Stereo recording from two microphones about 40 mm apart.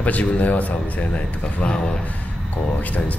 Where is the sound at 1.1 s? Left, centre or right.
Left.